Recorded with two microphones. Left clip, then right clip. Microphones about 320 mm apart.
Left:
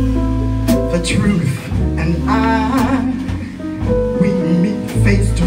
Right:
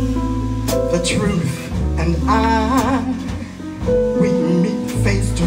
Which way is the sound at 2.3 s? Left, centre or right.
Right.